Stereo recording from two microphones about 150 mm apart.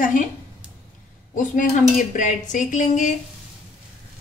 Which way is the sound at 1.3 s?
60° left (ahead or behind).